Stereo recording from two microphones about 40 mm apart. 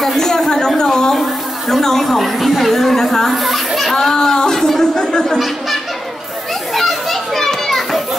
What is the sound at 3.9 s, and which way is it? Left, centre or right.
Speech, centre.